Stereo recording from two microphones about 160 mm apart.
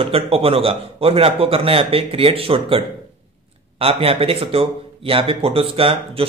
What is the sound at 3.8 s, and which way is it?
Speech, 35° right (ahead or behind).